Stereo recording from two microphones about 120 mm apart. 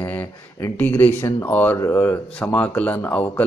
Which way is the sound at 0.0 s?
15° left (ahead or behind).